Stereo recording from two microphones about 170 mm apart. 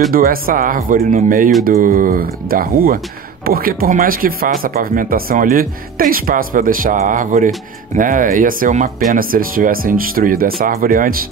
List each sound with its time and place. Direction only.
0.1 s speech: 60° right (ahead or behind)